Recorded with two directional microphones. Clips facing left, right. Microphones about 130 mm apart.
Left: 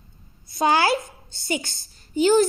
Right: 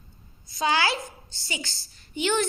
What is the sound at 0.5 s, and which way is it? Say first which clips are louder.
A woman's voice: left 5 dB; 50° left (ahead or behind).